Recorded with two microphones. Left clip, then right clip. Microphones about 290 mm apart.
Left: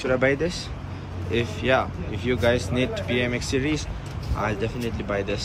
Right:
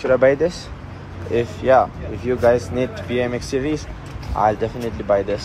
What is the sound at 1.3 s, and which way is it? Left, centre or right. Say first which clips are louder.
Speech: right 7 dB; right.